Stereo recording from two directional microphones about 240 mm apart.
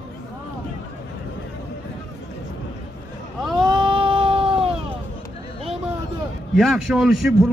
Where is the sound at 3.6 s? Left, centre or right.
Centre.